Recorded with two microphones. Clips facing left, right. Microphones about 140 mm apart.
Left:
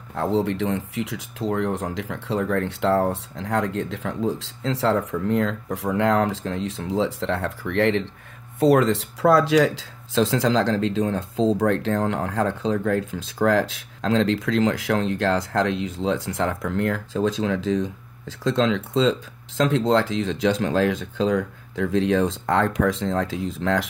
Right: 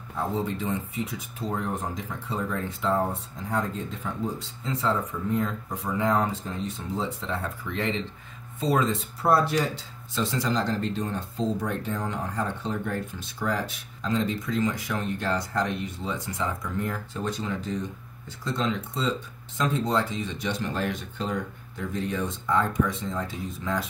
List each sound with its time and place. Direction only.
0.1 s speech: 85° left